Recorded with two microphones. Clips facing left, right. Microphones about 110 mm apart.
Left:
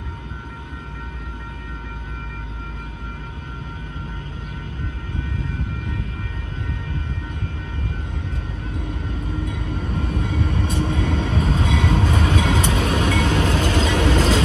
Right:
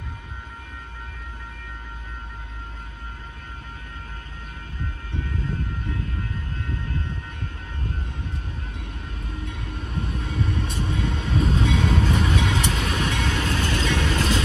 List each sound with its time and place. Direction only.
9.8 s train: 45° left (ahead or behind)
10.3 s vehicle: 40° left (ahead or behind)
11.0 s train: 40° left (ahead or behind)